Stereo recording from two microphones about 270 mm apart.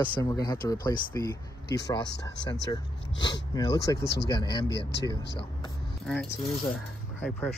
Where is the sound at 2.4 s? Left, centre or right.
Centre.